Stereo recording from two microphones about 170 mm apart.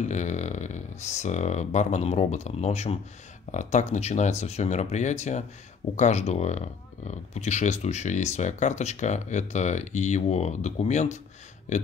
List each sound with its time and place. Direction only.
0.0 s speech: 45° left (ahead or behind)